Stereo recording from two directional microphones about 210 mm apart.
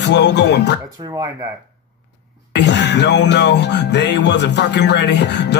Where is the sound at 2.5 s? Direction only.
55° left (ahead or behind).